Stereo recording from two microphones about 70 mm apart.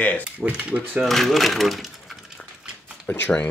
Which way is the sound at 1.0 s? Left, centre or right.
Centre.